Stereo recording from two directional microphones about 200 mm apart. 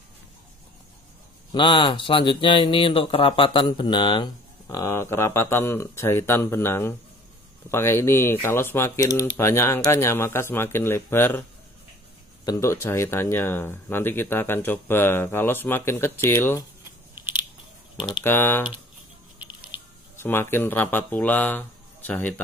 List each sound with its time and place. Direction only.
1.5 s speech: 25° left (ahead or behind)
12.4 s speech: 15° left (ahead or behind)
18.2 s speech: 10° left (ahead or behind)
19.3 s music: 10° right (ahead or behind)
20.2 s speech: 10° left (ahead or behind)